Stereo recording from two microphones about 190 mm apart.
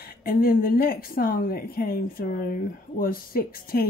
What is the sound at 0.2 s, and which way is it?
Speech, 50° left (ahead or behind).